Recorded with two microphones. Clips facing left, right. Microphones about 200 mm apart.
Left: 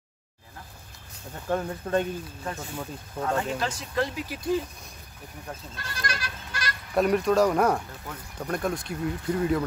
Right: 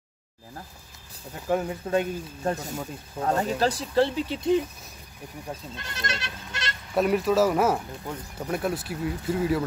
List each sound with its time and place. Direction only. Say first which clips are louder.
1.5 s speech: right 2 dB; 10° right (ahead or behind)
2.4 s speech: right 8 dB; 40° right (ahead or behind)
6.9 s speech: even; centre (ahead or behind)